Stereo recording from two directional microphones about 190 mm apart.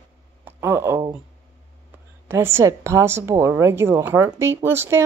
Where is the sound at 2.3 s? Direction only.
15° right (ahead or behind).